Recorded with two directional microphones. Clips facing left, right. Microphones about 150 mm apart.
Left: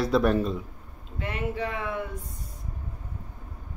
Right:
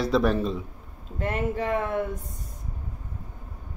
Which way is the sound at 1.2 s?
45° right (ahead or behind).